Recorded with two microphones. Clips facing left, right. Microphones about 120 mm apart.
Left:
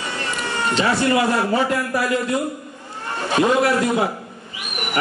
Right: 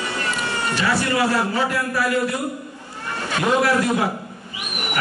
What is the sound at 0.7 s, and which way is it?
Speech, 20° left (ahead or behind).